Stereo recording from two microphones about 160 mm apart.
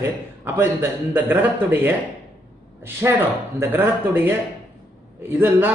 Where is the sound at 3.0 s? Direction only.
15° right (ahead or behind).